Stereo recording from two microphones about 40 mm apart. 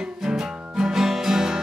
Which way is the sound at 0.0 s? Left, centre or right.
Right.